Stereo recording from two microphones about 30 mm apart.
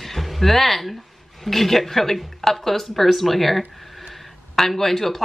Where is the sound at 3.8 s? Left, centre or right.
Centre.